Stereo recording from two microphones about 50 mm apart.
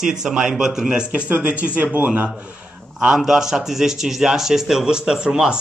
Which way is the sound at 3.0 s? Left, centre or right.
Centre.